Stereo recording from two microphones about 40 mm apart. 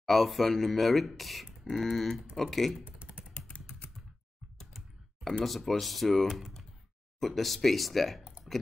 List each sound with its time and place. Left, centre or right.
0.0 s speech: centre
2.8 s computer keyboard: right
3.3 s typing: left
5.4 s speech: centre
8.5 s a sound: centre